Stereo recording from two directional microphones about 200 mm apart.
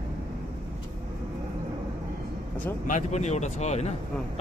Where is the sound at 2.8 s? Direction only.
35° left (ahead or behind).